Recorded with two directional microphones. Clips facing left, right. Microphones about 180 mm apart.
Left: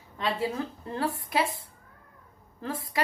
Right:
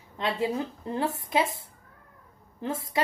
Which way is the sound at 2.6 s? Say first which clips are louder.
Right 2 dB; 25° right (ahead or behind).